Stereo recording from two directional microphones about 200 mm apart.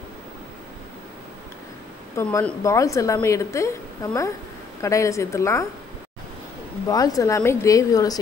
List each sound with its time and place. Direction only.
2.1 s a woman's voice: 15° left (ahead or behind)
6.9 s a woman's voice: 20° left (ahead or behind)